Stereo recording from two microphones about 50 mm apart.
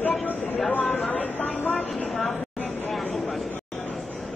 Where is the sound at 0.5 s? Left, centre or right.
Left.